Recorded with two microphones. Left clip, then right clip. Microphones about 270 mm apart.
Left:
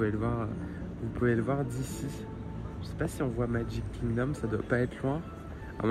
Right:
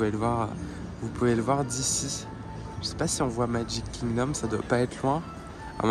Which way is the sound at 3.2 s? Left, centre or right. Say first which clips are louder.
Right 4 dB; right.